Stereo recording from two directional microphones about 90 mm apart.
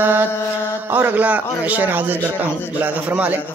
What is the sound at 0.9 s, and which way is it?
A man's voice, 20° right (ahead or behind).